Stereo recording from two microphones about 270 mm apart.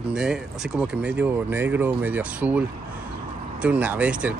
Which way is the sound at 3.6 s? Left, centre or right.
Centre.